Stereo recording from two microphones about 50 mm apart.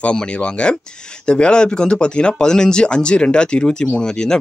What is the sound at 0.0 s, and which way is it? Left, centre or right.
Speech, left.